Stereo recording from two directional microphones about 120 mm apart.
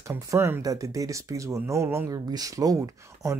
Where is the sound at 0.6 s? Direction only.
30° right (ahead or behind).